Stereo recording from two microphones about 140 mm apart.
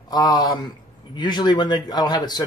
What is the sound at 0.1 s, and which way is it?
Speech, 30° left (ahead or behind).